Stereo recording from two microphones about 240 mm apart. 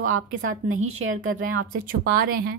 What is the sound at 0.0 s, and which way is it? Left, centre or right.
Speech, right.